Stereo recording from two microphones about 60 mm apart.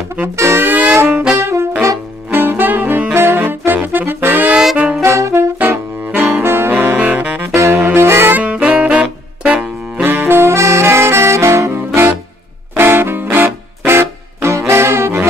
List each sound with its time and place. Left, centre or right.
0.4 s music: right
1.3 s brass instrument: right
2.3 s saxophone: right
4.7 s saxophone: centre
5.0 s saxophone: right
5.6 s saxophone: right
7.0 s saxophone: right
7.5 s saxophone: right
8.4 s saxophone: right
10.0 s saxophone: right
12.7 s music: right